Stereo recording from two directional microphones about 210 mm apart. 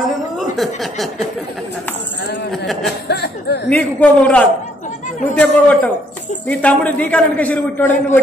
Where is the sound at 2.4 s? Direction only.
Centre (ahead or behind).